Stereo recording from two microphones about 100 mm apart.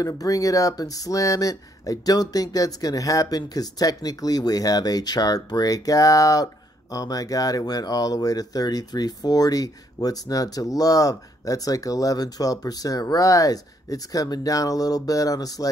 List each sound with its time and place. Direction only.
0.0 s speech: 35° left (ahead or behind)